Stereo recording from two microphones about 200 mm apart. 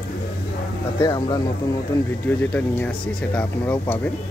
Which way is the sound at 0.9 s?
20° left (ahead or behind).